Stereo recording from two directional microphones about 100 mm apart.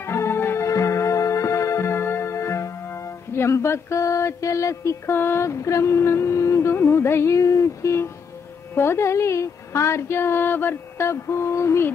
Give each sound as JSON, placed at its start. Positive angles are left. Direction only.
{"t": 0.0, "sound": "music", "side_deg": 25}
{"t": 8.7, "sound": "speech", "side_deg": 25}